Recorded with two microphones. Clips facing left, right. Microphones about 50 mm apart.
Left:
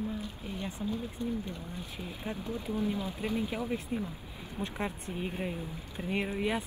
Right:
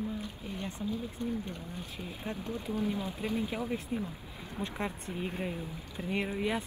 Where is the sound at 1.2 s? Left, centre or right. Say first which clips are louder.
Even; right.